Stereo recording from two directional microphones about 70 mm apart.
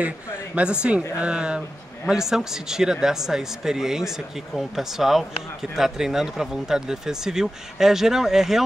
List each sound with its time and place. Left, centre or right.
0.6 s speech: centre